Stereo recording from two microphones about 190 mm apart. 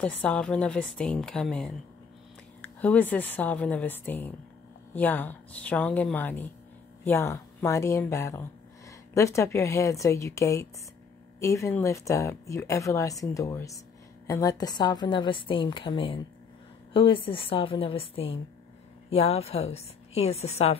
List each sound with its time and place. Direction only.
0.0 s a woman's voice: 5° left (ahead or behind); by 20.7 s 35° left (ahead or behind)